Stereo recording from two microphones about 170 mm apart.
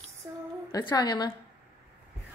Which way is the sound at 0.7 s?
25° left (ahead or behind).